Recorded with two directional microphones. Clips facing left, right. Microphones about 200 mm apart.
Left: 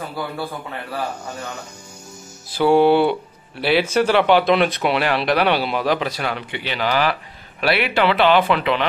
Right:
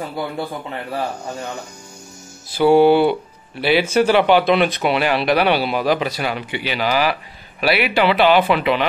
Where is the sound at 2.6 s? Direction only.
5° right (ahead or behind).